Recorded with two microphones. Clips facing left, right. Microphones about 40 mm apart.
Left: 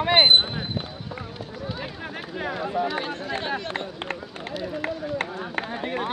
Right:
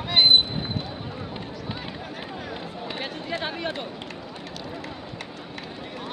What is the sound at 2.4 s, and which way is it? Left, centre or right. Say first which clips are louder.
Speech: left 8 dB; left.